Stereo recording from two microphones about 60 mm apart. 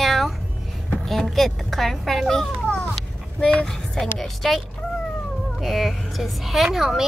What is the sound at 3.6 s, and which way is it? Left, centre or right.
A woman's voice, centre.